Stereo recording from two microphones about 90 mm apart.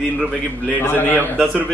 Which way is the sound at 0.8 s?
25° left (ahead or behind).